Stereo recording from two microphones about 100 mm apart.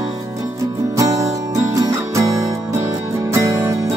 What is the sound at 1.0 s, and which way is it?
Music, 35° right (ahead or behind).